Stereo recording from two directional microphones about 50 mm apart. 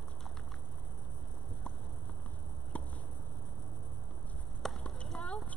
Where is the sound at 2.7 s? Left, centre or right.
Left.